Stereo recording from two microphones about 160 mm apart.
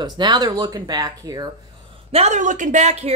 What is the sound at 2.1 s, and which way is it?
Speech, 45° right (ahead or behind).